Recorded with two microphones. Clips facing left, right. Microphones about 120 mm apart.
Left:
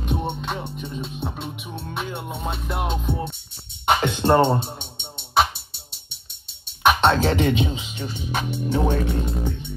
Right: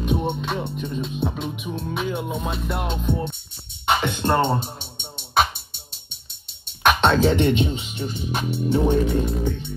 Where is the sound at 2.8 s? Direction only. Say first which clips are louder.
Left 1 dB; 15° left (ahead or behind).